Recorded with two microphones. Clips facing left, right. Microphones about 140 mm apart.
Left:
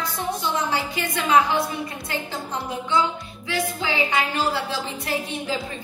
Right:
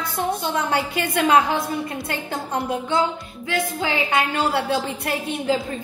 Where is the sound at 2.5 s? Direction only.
55° right (ahead or behind).